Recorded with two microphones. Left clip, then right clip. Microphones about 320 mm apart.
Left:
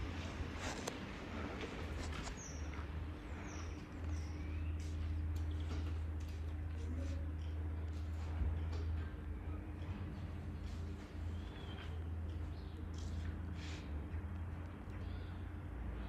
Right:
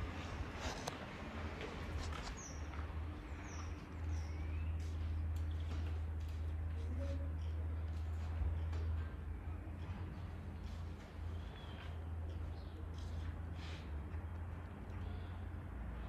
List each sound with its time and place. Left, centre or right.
0.6 s boat: centre